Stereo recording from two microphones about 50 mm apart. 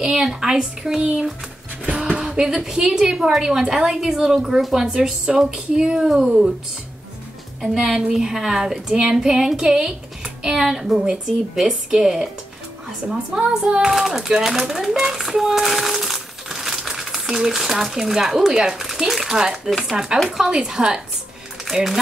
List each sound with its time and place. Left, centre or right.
0.0 s a woman's voice: centre
7.6 s a woman's voice: centre